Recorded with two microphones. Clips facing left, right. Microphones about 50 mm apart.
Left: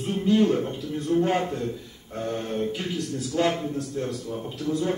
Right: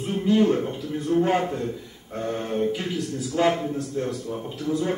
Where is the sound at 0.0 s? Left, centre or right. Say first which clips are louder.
Right 1 dB; centre.